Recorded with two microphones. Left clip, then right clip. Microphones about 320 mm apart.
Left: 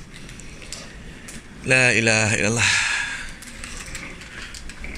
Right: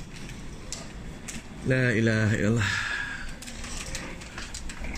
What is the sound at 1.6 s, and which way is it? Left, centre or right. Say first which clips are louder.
A man's voice: left 9 dB; centre.